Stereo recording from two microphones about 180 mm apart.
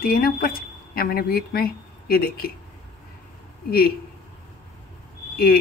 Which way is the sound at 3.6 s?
60° left (ahead or behind).